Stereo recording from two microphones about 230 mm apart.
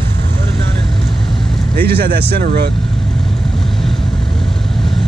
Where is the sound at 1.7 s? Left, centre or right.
Right.